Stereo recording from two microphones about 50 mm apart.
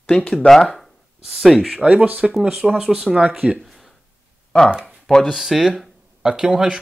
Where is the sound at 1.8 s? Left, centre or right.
Right.